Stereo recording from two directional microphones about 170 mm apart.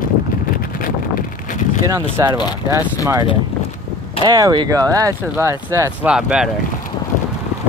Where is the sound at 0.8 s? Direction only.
55° left (ahead or behind).